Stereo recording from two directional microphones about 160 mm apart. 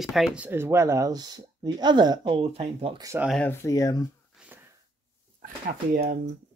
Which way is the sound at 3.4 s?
15° left (ahead or behind).